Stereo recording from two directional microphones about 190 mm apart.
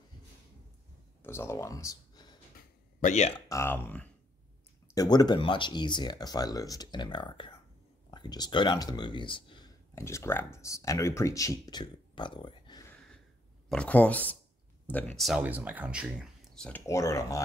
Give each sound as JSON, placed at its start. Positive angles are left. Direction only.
{"t": 1.2, "sound": "speech", "side_deg": 15}
{"t": 3.0, "sound": "speech", "side_deg": 40}
{"t": 3.4, "sound": "speech", "side_deg": 15}
{"t": 4.9, "sound": "speech", "side_deg": 20}
{"t": 9.9, "sound": "speech", "side_deg": 15}
{"t": 13.7, "sound": "speech", "side_deg": 5}